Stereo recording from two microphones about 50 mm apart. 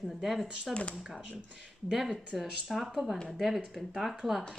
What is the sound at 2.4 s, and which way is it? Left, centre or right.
Speech, centre.